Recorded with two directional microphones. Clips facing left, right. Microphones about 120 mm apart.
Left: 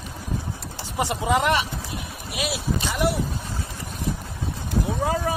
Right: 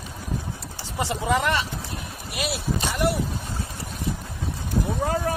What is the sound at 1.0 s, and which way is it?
Speech, 15° left (ahead or behind).